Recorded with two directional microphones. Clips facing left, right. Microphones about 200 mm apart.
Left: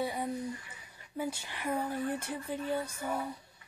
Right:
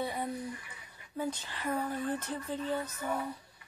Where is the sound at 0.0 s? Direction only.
10° left (ahead or behind).